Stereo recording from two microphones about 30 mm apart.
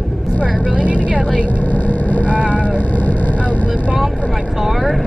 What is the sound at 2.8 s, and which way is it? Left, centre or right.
Vehicle, left.